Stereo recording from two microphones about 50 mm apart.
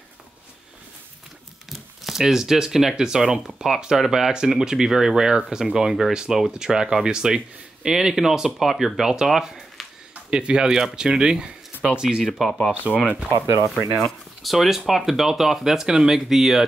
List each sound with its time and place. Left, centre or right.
1.7 s speech: centre
10.3 s speech: centre
12.2 s speech: centre
13.9 s speech: centre